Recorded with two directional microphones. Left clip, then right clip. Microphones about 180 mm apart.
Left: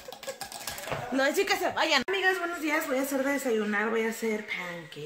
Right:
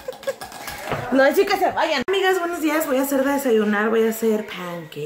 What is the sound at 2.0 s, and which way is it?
A woman's voice, 5° right (ahead or behind).